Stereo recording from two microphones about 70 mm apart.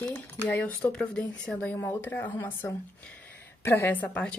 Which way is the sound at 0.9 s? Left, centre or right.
Centre.